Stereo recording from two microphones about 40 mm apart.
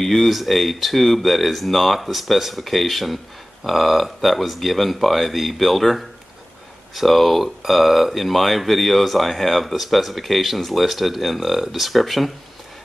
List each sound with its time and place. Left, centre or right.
0.0 s speech: centre